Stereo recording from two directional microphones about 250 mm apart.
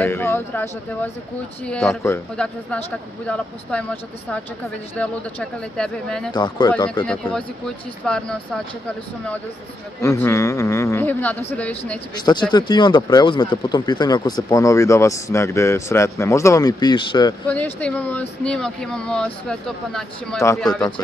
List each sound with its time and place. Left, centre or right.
0.0 s speech: centre
6.3 s speech: centre
7.1 s speech: centre
10.0 s speech: centre
17.5 s speech: centre